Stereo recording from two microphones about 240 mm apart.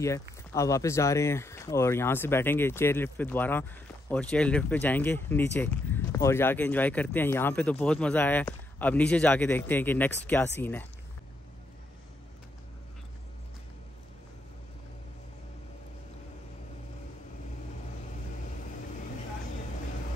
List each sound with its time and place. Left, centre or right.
0.0 s speech: centre